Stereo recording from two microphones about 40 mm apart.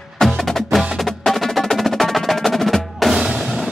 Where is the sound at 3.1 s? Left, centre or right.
Centre.